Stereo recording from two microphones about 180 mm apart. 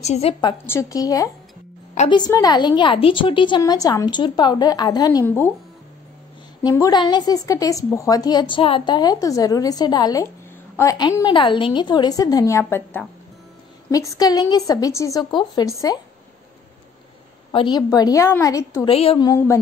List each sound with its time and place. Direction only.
0.0 s a woman's voice: 35° left (ahead or behind)
0.7 s a woman's voice: 15° left (ahead or behind)
5.2 s a sound: 10° left (ahead or behind)
6.6 s a woman's voice: 20° left (ahead or behind)
17.5 s a woman's voice: 25° left (ahead or behind)
18.9 s a woman's voice: 30° left (ahead or behind)
19.2 s a sound: 15° left (ahead or behind)